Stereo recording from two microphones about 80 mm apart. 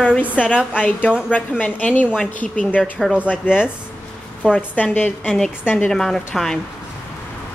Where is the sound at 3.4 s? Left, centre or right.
Centre.